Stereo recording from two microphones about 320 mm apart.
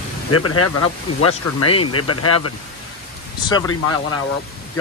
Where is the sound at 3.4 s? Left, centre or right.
Centre.